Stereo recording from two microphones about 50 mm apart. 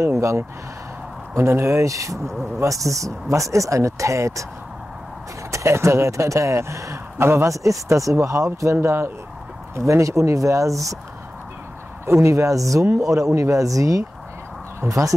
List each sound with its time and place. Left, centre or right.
0.0 s speech: right
2.1 s speech: centre
2.6 s speech: right
5.5 s speech: right
7.2 s speech: right
7.4 s speech: right
9.8 s speech: right
12.2 s speech: right
12.8 s speech: right